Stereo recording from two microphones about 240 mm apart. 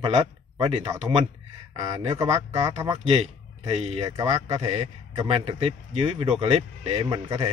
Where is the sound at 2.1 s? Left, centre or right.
Centre.